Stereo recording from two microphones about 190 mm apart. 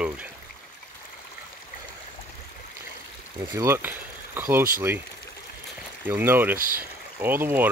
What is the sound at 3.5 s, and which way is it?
Speech, 15° right (ahead or behind).